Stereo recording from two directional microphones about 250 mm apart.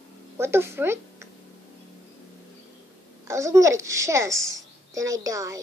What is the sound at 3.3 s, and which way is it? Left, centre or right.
A woman's voice, centre.